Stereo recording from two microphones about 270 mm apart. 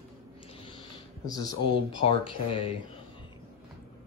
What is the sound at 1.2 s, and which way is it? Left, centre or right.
Speech, centre.